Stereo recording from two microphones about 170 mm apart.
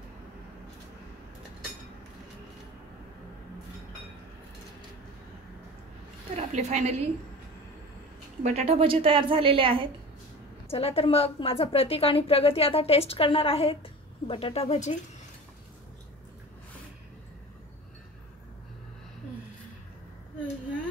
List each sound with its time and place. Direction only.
6.3 s a woman's voice: 40° right (ahead or behind)
8.4 s a woman's voice: 40° right (ahead or behind)
10.7 s a woman's voice: 35° left (ahead or behind)